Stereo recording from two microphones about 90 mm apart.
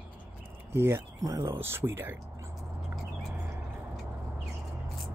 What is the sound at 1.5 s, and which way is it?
Speech, 30° right (ahead or behind).